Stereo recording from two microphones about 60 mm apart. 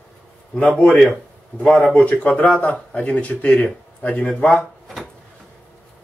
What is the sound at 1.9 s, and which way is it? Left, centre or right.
Speech, left.